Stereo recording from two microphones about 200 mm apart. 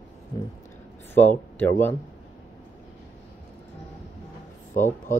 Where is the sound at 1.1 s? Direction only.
10° left (ahead or behind).